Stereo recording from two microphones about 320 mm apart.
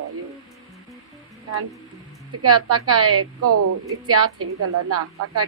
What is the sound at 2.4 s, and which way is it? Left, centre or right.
A woman's voice, right.